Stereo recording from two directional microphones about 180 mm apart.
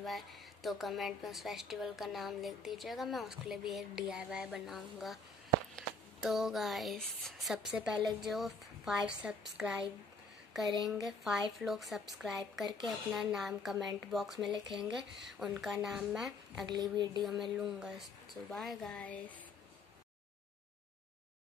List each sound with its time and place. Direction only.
0.0 s a woman's voice: centre (ahead or behind)
11.1 s a woman's voice: centre (ahead or behind)
16.6 s speech: 25° right (ahead or behind)
17.2 s a woman's voice: centre (ahead or behind)